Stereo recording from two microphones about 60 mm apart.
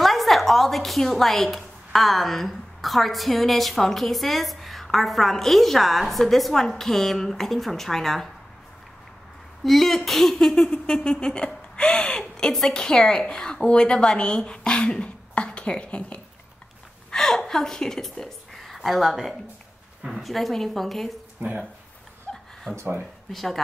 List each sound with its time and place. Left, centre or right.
0.0 s a woman's voice: centre
9.7 s speech: centre
17.1 s a woman's voice: centre
21.4 s speech: right
22.3 s chuckle: centre
23.3 s a woman's voice: centre